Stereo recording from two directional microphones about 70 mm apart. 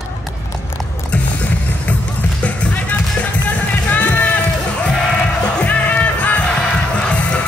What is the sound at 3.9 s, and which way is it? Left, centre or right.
Music, left.